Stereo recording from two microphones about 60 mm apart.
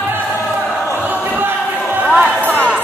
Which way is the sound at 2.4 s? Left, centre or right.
Left.